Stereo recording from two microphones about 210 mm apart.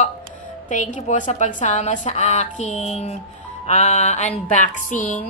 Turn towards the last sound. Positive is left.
turn(degrees=40)  # may be behind; listen again after turning